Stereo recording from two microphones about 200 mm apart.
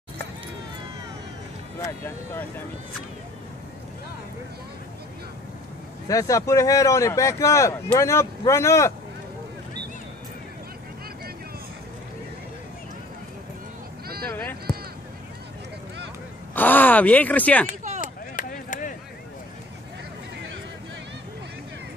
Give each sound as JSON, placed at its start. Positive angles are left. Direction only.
{"t": 1.8, "sound": "speech", "side_deg": 15}
{"t": 6.0, "sound": "speech", "side_deg": 15}
{"t": 14.0, "sound": "a sound", "side_deg": -50}
{"t": 14.3, "sound": "a sound", "side_deg": 5}
{"t": 16.5, "sound": "speech", "side_deg": 10}
{"t": 18.0, "sound": "chop", "side_deg": 40}